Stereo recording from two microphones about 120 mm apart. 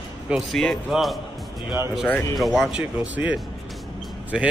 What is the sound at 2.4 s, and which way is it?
Speech, centre (ahead or behind).